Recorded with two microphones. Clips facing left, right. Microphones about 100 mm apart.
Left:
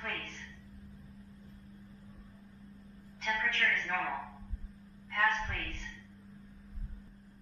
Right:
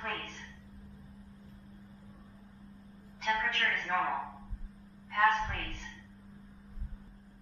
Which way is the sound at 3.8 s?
20° right (ahead or behind).